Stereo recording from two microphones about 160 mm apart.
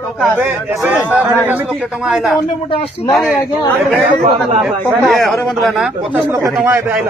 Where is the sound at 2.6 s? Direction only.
30° left (ahead or behind).